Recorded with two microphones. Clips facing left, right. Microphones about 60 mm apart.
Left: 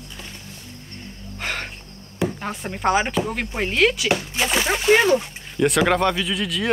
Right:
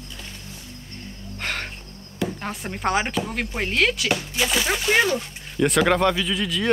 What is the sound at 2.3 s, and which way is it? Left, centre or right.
Speech, centre.